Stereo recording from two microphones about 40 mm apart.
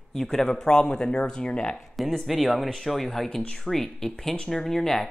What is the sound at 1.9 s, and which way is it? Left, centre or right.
Speech, centre.